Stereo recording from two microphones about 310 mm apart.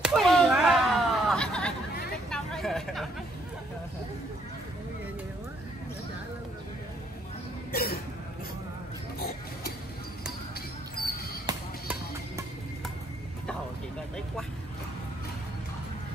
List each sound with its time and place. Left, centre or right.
0.0 s a sound: centre
7.7 s cough: left
11.4 s music: centre